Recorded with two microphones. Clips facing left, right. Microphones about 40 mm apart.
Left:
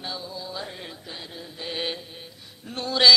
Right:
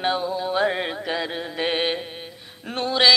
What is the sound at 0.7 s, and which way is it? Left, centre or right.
Music, right.